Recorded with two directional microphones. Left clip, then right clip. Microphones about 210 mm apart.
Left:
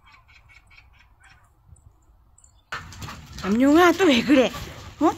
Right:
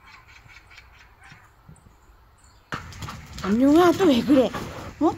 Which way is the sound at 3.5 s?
5° left (ahead or behind).